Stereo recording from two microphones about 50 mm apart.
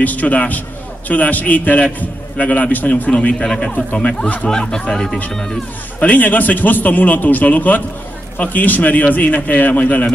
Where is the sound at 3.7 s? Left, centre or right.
Left.